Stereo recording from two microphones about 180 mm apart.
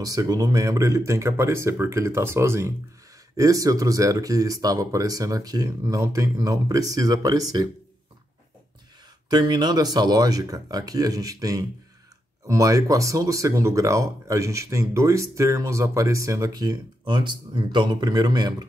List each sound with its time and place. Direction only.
0.0 s speech: 20° right (ahead or behind)
9.3 s speech: 25° right (ahead or behind)